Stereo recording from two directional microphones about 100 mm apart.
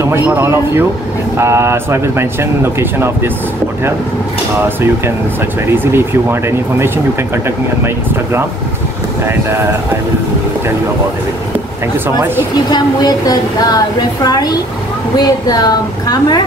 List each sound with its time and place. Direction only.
0.0 s speech: 25° right (ahead or behind)
5.7 s speech: 25° right (ahead or behind)
7.4 s speech: 25° right (ahead or behind)
12.7 s a woman's voice: 40° left (ahead or behind)